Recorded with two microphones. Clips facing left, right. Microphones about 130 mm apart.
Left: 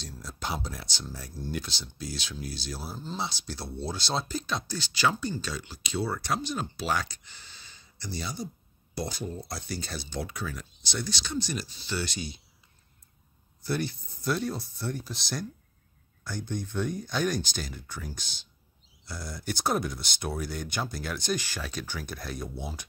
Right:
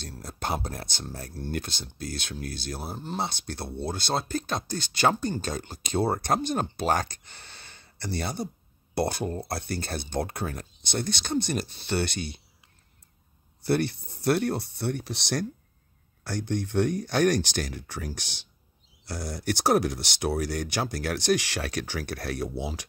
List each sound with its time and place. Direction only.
0.0 s speech: 55° right (ahead or behind)
13.6 s speech: 65° right (ahead or behind); by 22.8 s 85° right